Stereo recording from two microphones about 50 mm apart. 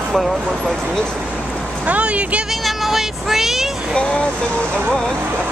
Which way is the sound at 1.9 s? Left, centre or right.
Right.